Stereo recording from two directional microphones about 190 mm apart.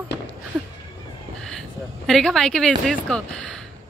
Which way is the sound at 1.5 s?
Centre (ahead or behind).